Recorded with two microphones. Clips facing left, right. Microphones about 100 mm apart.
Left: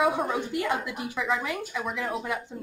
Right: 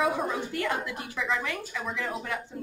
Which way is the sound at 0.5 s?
20° left (ahead or behind).